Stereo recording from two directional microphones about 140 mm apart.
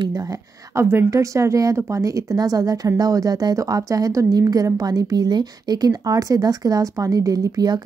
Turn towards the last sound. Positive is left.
turn(degrees=-25)  # may be behind; listen again after turning